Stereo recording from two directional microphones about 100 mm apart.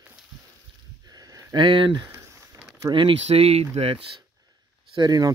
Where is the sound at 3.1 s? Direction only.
90° right.